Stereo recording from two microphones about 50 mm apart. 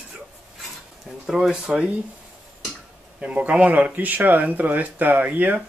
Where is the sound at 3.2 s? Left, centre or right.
Right.